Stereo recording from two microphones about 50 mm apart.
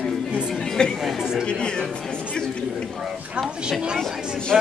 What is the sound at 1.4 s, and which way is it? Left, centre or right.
Speech, centre.